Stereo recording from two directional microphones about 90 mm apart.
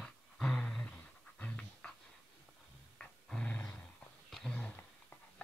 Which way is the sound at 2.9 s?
10° left (ahead or behind).